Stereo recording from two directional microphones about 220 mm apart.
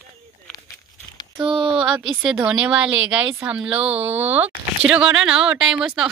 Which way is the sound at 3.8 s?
30° right (ahead or behind).